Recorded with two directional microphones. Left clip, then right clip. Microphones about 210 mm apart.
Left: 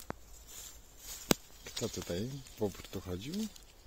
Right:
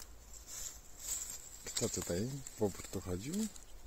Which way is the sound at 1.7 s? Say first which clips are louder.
Right 1 dB; centre (ahead or behind).